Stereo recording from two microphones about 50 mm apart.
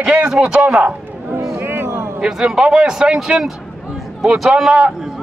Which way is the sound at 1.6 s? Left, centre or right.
Right.